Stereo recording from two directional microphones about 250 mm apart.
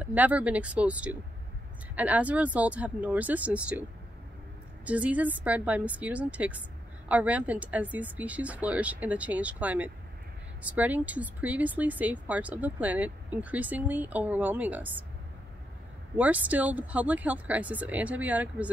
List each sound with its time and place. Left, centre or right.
0.0 s speech: centre
4.8 s speech: centre
16.2 s speech: centre